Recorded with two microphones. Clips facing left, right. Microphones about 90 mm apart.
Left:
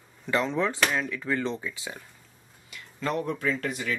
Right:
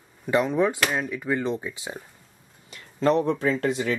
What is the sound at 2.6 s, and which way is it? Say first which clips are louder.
Speech: right 9 dB; 35° right (ahead or behind).